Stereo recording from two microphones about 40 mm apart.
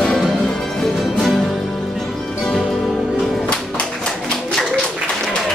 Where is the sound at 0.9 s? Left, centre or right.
Centre.